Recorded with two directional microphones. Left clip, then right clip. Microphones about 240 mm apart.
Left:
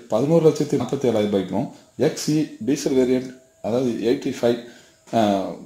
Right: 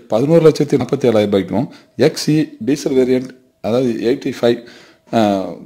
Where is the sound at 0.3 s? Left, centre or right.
Right.